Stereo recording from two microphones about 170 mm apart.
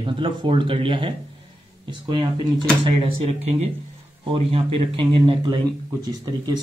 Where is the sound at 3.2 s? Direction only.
40° right (ahead or behind).